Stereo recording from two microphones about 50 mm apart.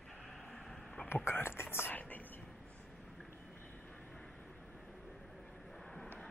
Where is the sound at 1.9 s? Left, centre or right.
Left.